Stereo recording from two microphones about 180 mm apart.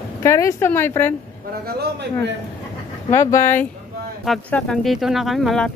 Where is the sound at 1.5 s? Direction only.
60° right (ahead or behind).